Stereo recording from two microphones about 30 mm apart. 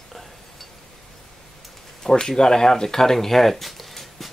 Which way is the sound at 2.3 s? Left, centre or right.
Left.